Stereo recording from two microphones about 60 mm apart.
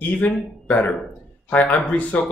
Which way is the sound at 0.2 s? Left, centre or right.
Left.